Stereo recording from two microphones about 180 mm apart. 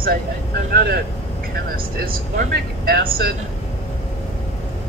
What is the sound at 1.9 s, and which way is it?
Speech, 55° right (ahead or behind).